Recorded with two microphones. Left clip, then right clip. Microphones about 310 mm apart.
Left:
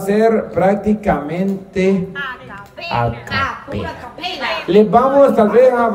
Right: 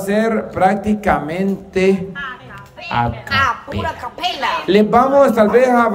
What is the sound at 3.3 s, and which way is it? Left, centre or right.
Speech, centre.